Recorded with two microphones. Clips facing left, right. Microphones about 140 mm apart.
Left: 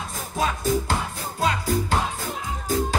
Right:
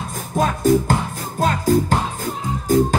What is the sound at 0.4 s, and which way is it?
Music, 50° right (ahead or behind).